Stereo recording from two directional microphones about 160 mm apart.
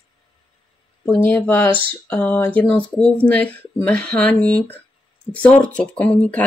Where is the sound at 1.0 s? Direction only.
10° left (ahead or behind).